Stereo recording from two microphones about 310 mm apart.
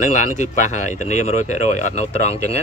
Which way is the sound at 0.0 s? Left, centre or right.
Left.